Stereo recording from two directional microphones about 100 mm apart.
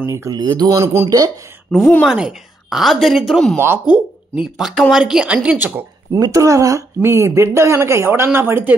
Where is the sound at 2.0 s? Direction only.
5° right (ahead or behind).